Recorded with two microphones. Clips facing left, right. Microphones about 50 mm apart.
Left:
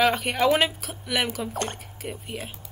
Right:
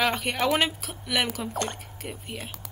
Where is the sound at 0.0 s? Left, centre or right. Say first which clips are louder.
Left 4 dB; centre.